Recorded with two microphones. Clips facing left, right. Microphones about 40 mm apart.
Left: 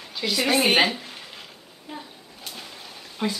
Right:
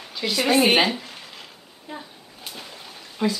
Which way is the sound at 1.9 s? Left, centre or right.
Centre.